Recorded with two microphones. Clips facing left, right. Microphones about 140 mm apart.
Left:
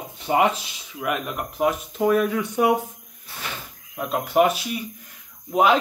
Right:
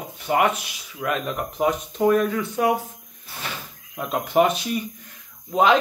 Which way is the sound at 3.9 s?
Centre (ahead or behind).